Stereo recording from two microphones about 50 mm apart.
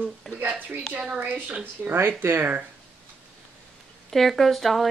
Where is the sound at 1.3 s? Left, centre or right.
Right.